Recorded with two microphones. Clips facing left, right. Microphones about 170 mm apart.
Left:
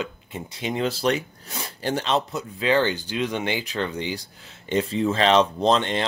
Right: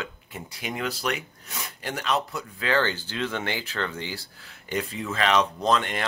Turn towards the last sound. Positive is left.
turn(degrees=25)  # may be behind; listen again after turning